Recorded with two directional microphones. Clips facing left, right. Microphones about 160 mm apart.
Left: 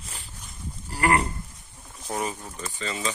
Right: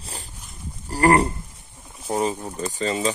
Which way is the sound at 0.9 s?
40° right (ahead or behind).